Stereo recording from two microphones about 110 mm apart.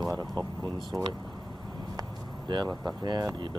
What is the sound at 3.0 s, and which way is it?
Speech, 40° right (ahead or behind).